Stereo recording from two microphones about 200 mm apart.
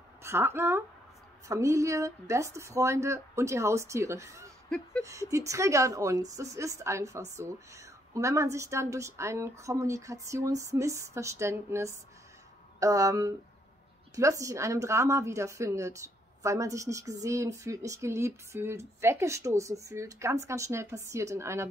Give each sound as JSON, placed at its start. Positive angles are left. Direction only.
{"t": 0.2, "sound": "a woman's voice", "side_deg": -10}
{"t": 4.6, "sound": "a sound", "side_deg": 5}
{"t": 5.0, "sound": "a woman's voice", "side_deg": -15}